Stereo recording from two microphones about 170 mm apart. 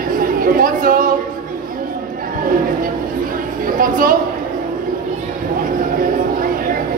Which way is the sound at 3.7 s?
55° right (ahead or behind).